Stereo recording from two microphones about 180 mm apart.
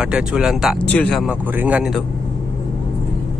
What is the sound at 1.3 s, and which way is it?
Speech, 10° right (ahead or behind).